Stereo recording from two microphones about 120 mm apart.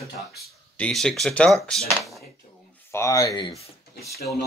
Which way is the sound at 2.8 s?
25° left (ahead or behind).